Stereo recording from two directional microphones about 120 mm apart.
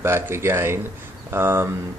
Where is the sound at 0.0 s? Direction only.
20° right (ahead or behind).